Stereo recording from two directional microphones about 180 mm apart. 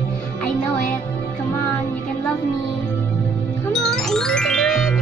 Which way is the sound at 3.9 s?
Centre (ahead or behind).